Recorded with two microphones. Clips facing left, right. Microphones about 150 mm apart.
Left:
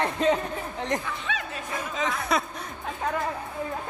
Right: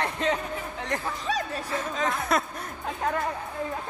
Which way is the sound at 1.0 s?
35° right (ahead or behind).